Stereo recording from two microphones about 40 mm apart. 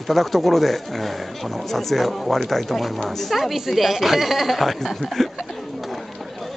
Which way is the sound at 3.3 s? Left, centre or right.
Centre.